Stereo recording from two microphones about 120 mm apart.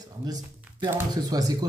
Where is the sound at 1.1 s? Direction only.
30° right (ahead or behind).